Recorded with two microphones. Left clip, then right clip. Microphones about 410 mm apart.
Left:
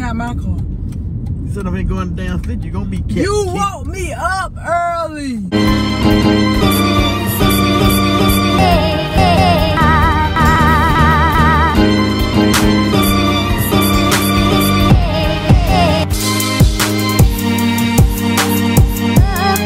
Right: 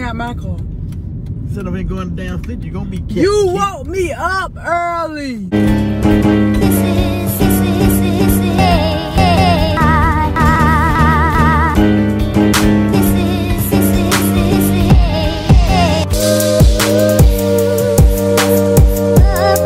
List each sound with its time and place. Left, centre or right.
5.5 s music: centre